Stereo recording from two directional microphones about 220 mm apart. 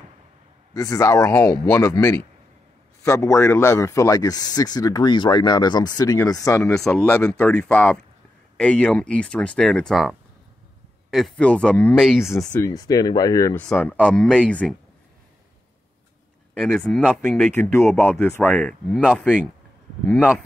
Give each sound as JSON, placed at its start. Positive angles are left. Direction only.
{"t": 0.7, "sound": "speech", "side_deg": 15}
{"t": 6.6, "sound": "speech", "side_deg": 5}
{"t": 12.5, "sound": "speech", "side_deg": 15}
{"t": 16.5, "sound": "speech", "side_deg": 5}